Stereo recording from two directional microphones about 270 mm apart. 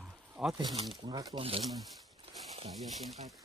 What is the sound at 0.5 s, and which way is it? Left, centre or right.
Speech, centre.